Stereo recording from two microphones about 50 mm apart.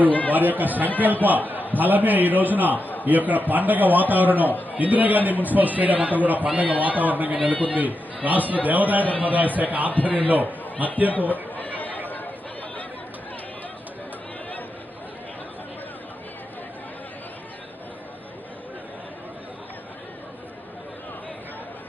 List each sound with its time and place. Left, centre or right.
0.3 s a man's voice: right
9.9 s a man's voice: left
11.5 s chatter: left